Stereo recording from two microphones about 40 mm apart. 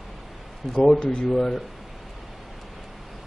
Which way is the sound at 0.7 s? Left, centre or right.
Centre.